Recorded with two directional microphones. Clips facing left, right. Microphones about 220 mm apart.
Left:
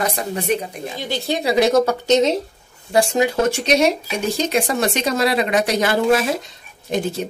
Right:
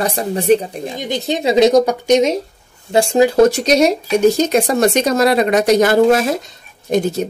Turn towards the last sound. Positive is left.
turn(degrees=-45)  # may be behind; listen again after turning